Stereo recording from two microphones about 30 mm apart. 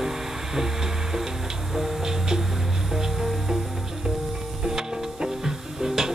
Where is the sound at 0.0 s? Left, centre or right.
Centre.